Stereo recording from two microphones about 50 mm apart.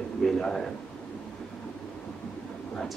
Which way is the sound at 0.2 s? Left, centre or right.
Centre.